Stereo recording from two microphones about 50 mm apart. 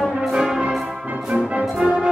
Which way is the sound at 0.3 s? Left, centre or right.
Centre.